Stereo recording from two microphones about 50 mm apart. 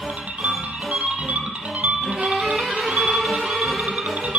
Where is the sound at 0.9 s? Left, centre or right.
Right.